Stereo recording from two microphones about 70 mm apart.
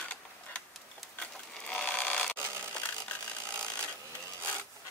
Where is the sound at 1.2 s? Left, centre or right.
Centre.